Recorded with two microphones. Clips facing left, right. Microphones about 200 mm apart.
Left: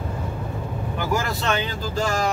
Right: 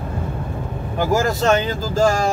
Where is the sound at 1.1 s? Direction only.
40° right (ahead or behind).